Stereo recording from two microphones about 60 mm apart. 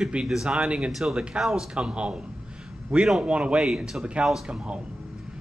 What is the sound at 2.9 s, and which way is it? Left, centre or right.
Speech, centre.